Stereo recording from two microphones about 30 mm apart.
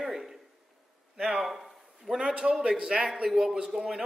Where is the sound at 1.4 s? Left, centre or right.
Centre.